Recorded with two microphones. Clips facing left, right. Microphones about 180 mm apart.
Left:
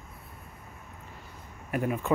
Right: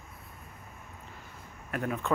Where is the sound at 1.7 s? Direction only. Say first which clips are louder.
Left 3 dB; 10° left (ahead or behind).